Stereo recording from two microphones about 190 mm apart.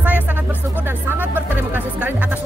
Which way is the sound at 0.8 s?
10° right (ahead or behind).